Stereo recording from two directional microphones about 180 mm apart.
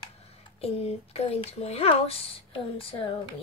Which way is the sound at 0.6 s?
35° left (ahead or behind).